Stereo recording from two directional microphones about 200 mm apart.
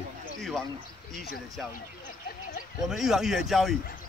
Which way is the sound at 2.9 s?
Centre (ahead or behind).